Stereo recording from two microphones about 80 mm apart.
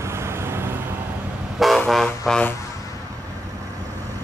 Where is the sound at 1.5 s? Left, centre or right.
Centre.